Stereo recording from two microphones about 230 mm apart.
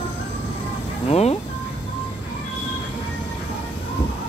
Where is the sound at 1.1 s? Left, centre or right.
Left.